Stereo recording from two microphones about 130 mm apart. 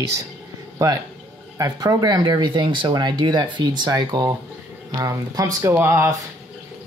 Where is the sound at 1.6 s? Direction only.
30° right (ahead or behind).